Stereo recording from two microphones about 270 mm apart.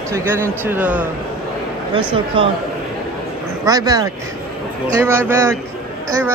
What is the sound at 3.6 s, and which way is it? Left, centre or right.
Speech, centre.